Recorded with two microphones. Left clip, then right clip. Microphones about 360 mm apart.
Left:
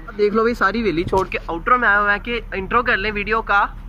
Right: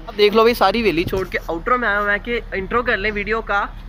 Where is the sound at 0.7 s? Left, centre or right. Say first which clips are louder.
Right 3 dB; right.